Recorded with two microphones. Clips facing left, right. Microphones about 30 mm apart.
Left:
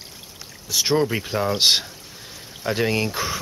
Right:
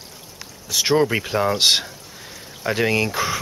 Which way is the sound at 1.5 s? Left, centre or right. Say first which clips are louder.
Even; centre.